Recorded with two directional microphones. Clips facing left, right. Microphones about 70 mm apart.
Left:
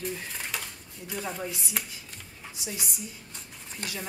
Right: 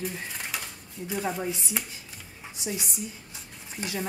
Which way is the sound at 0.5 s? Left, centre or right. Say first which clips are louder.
Even; centre.